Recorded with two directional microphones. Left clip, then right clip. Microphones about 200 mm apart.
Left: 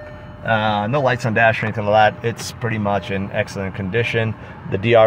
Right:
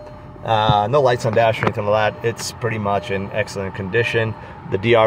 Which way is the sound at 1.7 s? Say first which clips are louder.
Left 3 dB; 5° right (ahead or behind).